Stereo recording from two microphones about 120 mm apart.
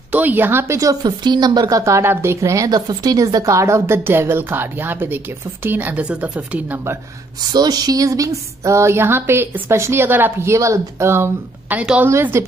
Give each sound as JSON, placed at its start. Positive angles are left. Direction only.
{"t": 0.1, "sound": "speech", "side_deg": -15}
{"t": 7.5, "sound": "speech", "side_deg": -35}
{"t": 11.7, "sound": "a woman's voice", "side_deg": -10}
{"t": 12.1, "sound": "speech", "side_deg": -20}